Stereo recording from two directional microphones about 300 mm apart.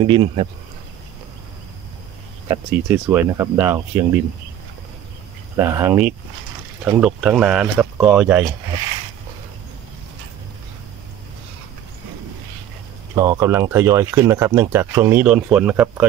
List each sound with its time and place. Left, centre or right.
0.0 s speech: centre
2.9 s speech: centre
5.6 s speech: centre
13.1 s speech: centre